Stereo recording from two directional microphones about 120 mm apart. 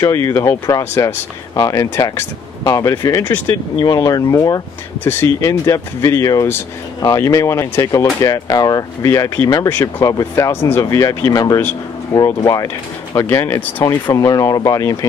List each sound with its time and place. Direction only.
0.0 s speech: 20° left (ahead or behind)
9.7 s speech: 20° left (ahead or behind)
10.0 s speech: 30° left (ahead or behind)
12.1 s speech: 15° left (ahead or behind)
14.0 s speech: 30° left (ahead or behind)